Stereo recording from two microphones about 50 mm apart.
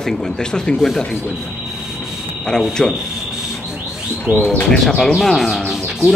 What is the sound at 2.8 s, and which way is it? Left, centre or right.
Speech, centre.